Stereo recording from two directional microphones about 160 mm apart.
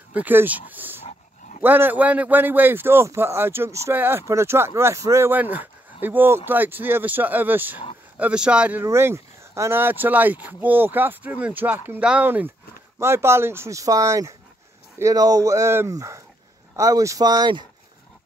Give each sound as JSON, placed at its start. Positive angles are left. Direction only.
{"t": 0.1, "sound": "a man's voice", "side_deg": -10}